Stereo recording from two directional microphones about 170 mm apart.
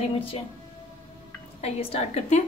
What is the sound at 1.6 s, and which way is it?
Speech, 35° left (ahead or behind).